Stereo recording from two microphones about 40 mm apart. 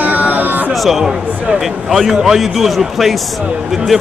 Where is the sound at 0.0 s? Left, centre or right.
Right.